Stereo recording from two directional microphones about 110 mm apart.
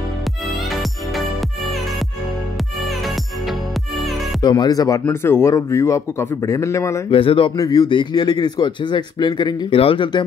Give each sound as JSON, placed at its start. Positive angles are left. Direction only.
{"t": 4.4, "sound": "a man's voice", "side_deg": 40}
{"t": 5.0, "sound": "a man's voice", "side_deg": 20}
{"t": 7.1, "sound": "speech", "side_deg": 55}
{"t": 7.5, "sound": "a man's voice", "side_deg": 35}
{"t": 9.8, "sound": "speech", "side_deg": 55}